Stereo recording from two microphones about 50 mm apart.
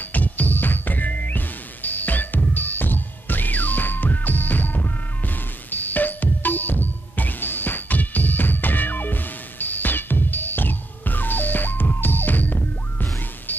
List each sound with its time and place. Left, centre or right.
0.0 s music: left